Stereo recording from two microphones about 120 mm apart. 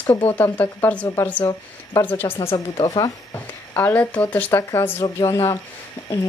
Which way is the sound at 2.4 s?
55° left (ahead or behind).